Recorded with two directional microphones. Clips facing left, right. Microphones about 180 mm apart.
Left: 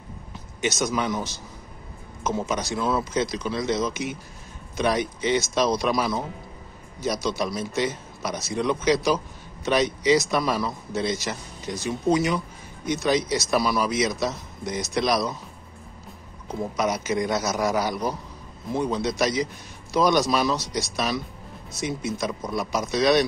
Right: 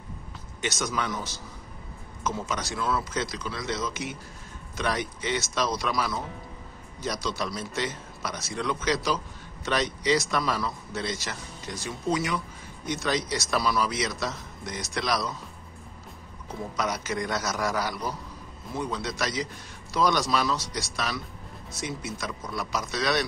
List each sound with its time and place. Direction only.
0.6 s a man's voice: 10° left (ahead or behind)
16.7 s a man's voice: 15° left (ahead or behind)
22.2 s speech: 20° left (ahead or behind)